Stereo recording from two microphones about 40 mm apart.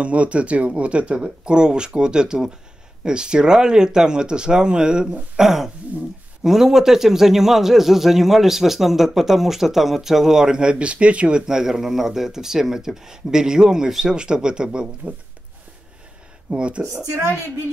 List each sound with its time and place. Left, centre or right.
0.0 s a man's voice: right
11.4 s a man's voice: centre
16.5 s speech: right
16.9 s speech: right